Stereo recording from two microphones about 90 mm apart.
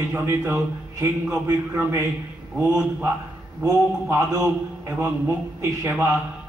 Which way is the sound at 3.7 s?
30° right (ahead or behind).